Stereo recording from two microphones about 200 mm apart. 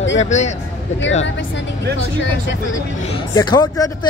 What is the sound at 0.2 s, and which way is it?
Speech, 35° left (ahead or behind).